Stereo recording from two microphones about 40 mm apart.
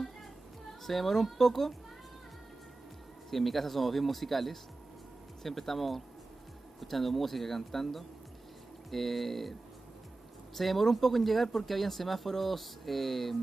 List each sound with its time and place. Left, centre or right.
0.8 s speech: centre
3.3 s speech: centre